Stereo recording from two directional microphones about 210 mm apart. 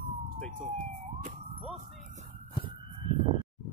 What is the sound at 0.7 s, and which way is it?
Emergency vehicle, 35° right (ahead or behind).